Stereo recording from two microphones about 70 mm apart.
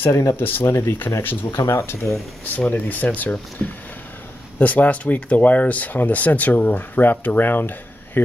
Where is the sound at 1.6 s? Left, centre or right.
Left.